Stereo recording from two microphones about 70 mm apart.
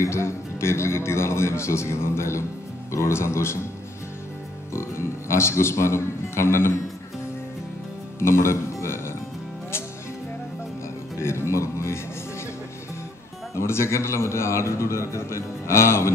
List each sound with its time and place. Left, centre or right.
0.0 s a man's voice: left
4.7 s a man's voice: left
8.2 s speech: left
11.1 s speech: left
13.6 s a man's voice: left